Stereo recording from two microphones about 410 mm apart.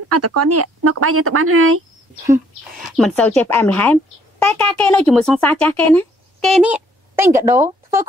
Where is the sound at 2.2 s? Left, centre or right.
Centre.